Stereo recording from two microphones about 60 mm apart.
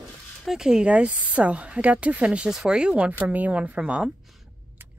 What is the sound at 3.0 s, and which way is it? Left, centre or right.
Speech, right.